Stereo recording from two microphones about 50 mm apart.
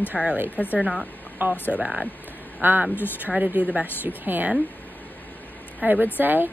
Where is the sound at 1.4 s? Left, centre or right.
Right.